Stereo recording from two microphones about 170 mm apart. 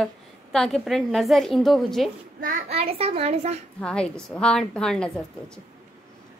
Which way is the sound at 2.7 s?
35° right (ahead or behind).